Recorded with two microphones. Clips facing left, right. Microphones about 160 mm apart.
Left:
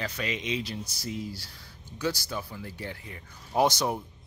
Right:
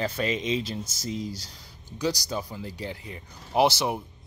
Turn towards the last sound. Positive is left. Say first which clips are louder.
# right 2 dB
turn(degrees=-10)  # may be behind; listen again after turning